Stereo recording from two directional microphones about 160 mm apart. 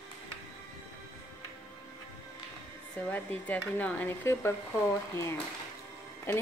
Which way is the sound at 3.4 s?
10° left (ahead or behind).